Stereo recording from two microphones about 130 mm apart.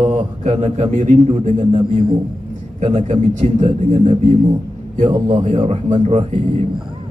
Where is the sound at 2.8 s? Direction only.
55° right (ahead or behind).